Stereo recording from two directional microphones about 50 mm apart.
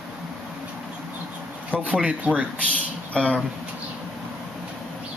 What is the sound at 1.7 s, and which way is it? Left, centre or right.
Speech, right.